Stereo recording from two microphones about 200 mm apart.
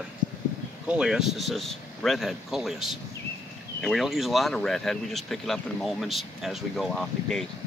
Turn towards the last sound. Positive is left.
turn(degrees=0)  # may be behind; listen again after turning